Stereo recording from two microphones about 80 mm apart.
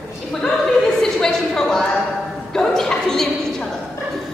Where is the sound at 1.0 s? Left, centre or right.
Centre.